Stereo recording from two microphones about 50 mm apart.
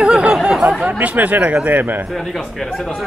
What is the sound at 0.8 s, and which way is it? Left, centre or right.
Speech, right.